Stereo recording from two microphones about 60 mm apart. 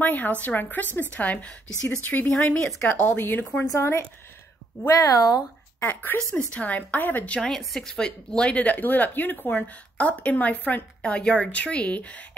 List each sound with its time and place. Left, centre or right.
0.0 s speech: left
4.8 s speech: left
5.8 s speech: left
7.3 s speech: centre; by 10.8 s left
11.0 s speech: centre